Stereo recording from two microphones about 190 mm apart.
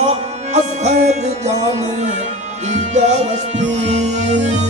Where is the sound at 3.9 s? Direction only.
40° right (ahead or behind).